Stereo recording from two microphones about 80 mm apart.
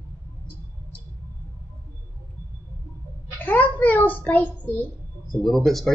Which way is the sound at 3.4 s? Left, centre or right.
Left.